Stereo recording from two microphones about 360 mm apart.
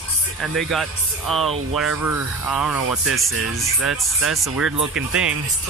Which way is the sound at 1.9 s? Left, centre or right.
Right.